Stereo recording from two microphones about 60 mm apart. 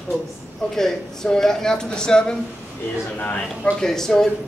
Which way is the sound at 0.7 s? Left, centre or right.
Centre.